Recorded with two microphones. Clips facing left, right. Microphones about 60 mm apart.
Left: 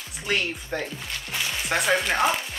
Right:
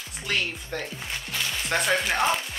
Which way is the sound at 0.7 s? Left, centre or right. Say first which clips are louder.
Left 2 dB; centre.